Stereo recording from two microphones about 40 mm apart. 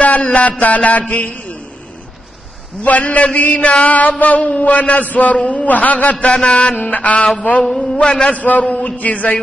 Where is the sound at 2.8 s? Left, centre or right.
Left.